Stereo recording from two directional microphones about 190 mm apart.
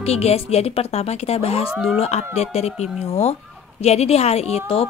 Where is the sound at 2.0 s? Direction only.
35° left (ahead or behind).